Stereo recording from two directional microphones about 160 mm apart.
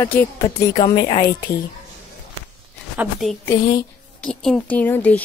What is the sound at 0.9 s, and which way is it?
Speech, 35° left (ahead or behind).